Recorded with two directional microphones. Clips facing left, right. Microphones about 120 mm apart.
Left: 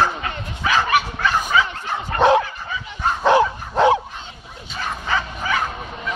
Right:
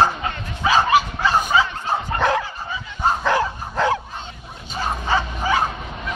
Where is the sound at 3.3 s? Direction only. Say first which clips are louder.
Left 5 dB; 20° left (ahead or behind).